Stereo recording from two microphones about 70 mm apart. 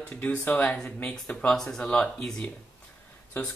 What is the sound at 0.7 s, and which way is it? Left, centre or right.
Speech, centre.